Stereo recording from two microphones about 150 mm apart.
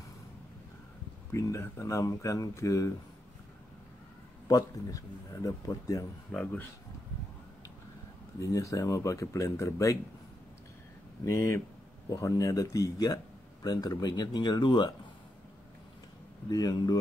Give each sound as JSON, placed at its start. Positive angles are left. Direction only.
{"t": 1.3, "sound": "speech", "side_deg": 20}
{"t": 4.5, "sound": "speech", "side_deg": 25}
{"t": 6.3, "sound": "speech", "side_deg": 10}
{"t": 8.4, "sound": "speech", "side_deg": 20}
{"t": 11.2, "sound": "speech", "side_deg": 20}
{"t": 16.4, "sound": "speech", "side_deg": 25}